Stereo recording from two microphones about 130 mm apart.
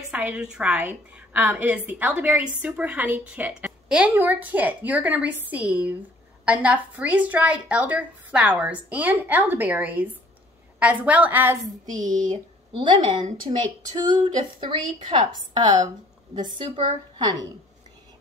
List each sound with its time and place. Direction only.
0.1 s a woman's voice: 10° right (ahead or behind)
11.8 s a woman's voice: 30° right (ahead or behind)